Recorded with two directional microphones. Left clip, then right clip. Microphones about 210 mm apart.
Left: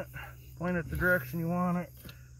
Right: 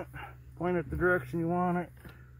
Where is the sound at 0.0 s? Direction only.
50° right (ahead or behind).